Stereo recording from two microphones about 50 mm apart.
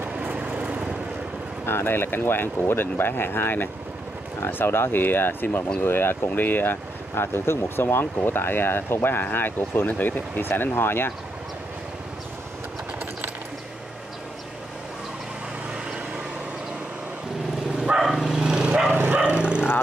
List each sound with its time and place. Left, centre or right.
0.3 s vehicle: right
1.7 s speech: left
6.2 s speech: left
17.9 s vehicle: centre
18.9 s bow-wow: right